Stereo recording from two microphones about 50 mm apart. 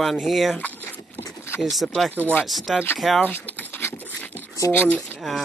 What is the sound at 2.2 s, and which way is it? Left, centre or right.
Speech, left.